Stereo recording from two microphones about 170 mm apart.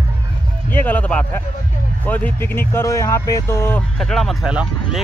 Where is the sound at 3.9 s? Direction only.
Centre (ahead or behind).